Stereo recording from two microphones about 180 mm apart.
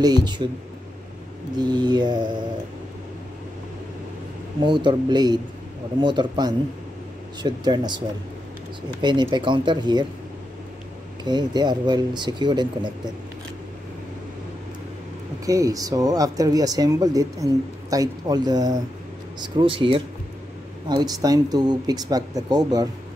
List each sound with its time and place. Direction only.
0.0 s speech: 25° right (ahead or behind)
1.6 s speech: 25° right (ahead or behind)
4.6 s speech: 25° right (ahead or behind)
9.0 s speech: 25° right (ahead or behind)
11.2 s speech: 25° right (ahead or behind)
15.4 s speech: 20° right (ahead or behind)